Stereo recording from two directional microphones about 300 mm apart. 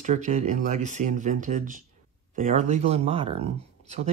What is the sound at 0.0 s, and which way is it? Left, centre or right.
Speech, right.